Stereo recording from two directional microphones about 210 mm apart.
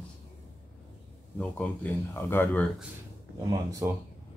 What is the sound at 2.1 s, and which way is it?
Speech, 10° left (ahead or behind).